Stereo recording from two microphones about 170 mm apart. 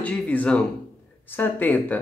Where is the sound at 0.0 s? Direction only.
10° left (ahead or behind).